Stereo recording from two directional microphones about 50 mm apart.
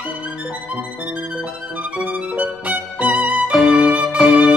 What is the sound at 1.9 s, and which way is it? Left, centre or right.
Music, right.